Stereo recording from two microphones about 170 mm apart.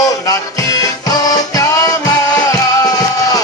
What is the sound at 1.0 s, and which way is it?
Music, 20° left (ahead or behind).